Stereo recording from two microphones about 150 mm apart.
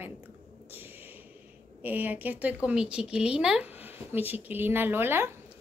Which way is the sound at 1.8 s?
10° right (ahead or behind).